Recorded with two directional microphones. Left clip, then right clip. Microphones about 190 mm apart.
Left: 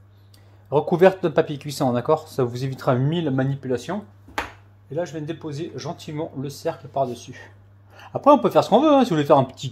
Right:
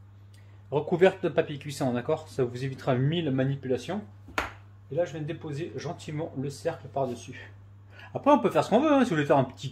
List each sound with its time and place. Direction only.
0.7 s speech: 25° left (ahead or behind)